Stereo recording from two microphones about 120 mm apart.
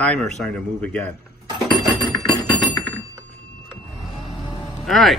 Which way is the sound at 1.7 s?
35° left (ahead or behind).